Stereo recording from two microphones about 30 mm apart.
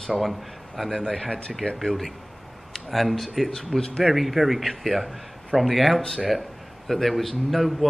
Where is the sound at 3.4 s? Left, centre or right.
Centre.